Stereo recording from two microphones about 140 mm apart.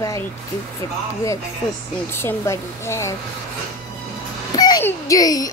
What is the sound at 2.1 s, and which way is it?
Speech, 15° left (ahead or behind).